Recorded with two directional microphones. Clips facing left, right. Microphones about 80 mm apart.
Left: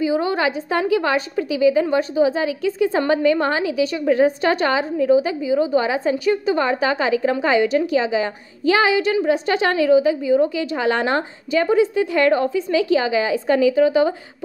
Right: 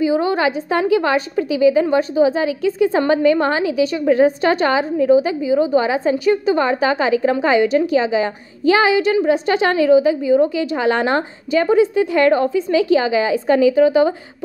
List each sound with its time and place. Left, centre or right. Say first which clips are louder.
0.0 s a woman's voice: right 3 dB; right